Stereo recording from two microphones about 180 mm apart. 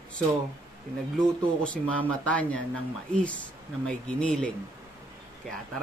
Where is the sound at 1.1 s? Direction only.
5° left (ahead or behind).